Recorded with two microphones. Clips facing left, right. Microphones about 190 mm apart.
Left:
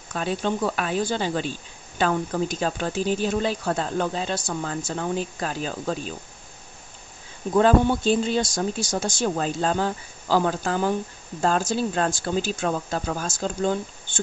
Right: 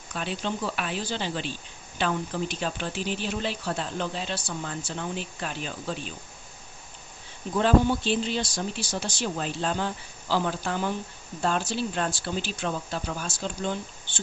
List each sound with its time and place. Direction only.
0.1 s speech: 45° left (ahead or behind)
7.5 s speech: 55° left (ahead or behind)